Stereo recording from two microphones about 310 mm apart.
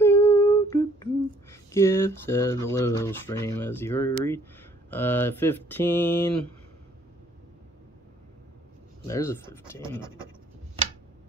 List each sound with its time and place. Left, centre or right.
0.0 s humming: centre
1.5 s speech: centre
9.0 s speech: centre